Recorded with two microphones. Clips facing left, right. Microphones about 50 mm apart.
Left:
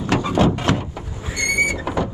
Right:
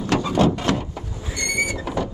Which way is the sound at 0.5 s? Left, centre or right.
Left.